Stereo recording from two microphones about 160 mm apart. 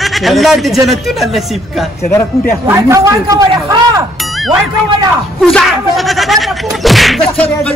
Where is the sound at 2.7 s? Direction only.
20° right (ahead or behind).